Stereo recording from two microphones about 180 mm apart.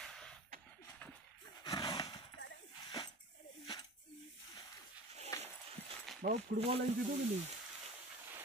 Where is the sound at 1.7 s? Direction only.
25° left (ahead or behind).